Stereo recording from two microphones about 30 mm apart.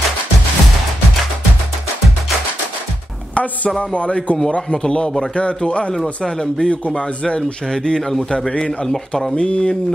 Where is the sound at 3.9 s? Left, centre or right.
Left.